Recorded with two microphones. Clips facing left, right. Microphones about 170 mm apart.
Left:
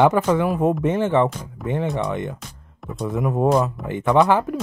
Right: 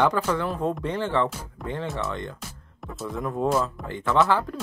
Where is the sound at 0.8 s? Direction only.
20° left (ahead or behind).